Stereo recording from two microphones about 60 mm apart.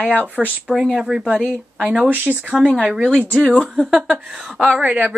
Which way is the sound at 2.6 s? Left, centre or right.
Centre.